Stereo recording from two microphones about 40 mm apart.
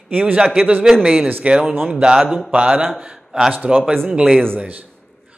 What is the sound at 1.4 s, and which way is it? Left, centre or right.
Speech, right.